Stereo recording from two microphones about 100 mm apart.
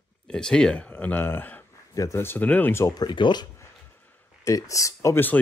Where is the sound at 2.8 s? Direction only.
45° left (ahead or behind).